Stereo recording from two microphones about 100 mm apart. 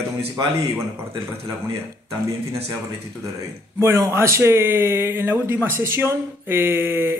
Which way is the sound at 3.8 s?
30° right (ahead or behind).